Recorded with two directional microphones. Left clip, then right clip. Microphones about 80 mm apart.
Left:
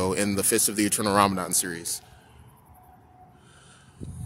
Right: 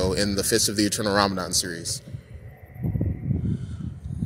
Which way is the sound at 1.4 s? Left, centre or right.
Left.